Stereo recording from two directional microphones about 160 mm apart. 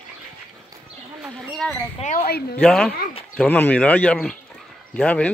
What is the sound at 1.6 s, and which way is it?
Speech, 10° left (ahead or behind).